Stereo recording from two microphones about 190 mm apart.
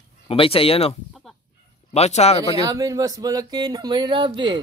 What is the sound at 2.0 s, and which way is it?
Speech, 35° left (ahead or behind).